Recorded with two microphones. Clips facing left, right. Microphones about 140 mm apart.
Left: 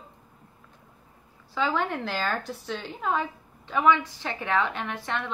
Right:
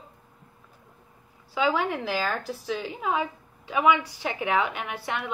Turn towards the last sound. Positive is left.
turn(degrees=-10)  # may be behind; listen again after turning